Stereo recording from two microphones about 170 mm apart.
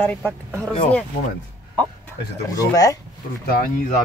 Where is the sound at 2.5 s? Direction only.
20° left (ahead or behind).